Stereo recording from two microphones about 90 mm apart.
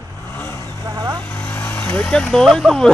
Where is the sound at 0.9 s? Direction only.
50° right (ahead or behind).